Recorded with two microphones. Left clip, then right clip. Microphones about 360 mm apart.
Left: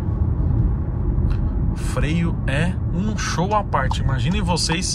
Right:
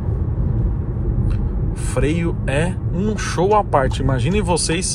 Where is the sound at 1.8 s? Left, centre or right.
Centre.